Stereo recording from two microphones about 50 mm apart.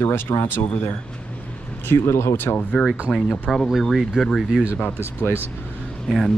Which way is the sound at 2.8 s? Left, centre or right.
Centre.